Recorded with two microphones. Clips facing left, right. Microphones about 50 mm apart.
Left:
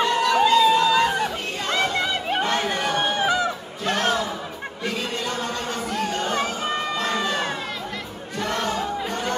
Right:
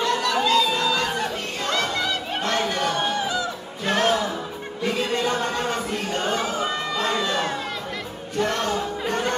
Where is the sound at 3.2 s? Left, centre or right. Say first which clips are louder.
Left 4 dB; left.